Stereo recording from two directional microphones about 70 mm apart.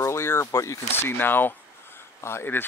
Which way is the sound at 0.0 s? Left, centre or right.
Left.